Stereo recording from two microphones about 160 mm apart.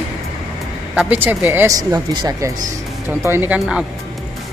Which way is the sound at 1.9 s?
25° right (ahead or behind).